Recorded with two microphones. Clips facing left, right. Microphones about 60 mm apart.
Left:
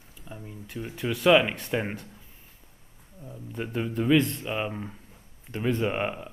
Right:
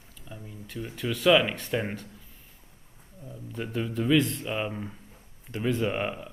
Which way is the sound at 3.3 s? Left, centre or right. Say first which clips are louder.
Left 1 dB; centre.